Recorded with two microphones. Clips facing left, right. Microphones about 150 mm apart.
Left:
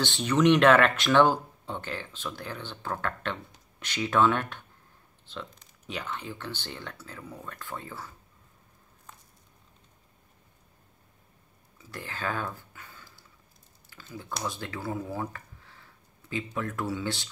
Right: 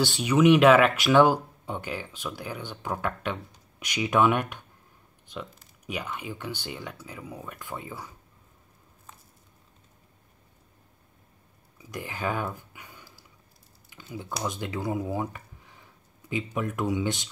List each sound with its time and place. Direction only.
0.0 s speech: 10° right (ahead or behind)
11.8 s speech: 15° right (ahead or behind)
13.9 s a sound: 15° right (ahead or behind)
14.4 s speech: 20° right (ahead or behind)